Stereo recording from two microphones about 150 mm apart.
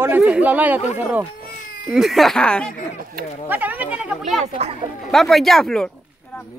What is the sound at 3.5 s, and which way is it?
Speech, 10° right (ahead or behind).